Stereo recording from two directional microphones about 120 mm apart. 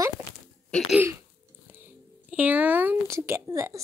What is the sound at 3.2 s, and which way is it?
Child singing, 25° right (ahead or behind).